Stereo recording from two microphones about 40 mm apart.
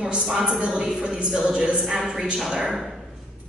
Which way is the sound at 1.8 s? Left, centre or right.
Centre.